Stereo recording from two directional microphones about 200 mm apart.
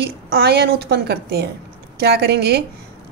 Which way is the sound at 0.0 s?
55° right (ahead or behind).